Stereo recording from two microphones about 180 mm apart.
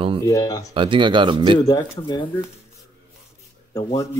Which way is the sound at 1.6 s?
20° left (ahead or behind).